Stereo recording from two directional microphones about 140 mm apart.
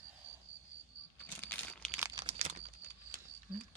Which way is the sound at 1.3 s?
10° left (ahead or behind).